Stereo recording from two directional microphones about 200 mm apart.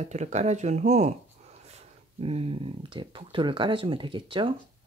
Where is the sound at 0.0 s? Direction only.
35° right (ahead or behind).